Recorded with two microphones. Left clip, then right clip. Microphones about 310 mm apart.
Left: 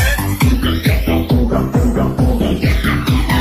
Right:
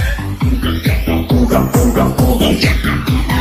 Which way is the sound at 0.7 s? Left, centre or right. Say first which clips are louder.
Even; centre.